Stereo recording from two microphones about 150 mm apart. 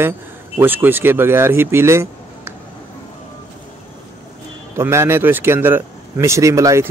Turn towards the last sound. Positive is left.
turn(degrees=-20)  # may be behind; listen again after turning